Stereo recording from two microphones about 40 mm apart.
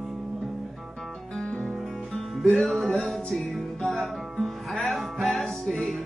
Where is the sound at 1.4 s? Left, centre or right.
Left.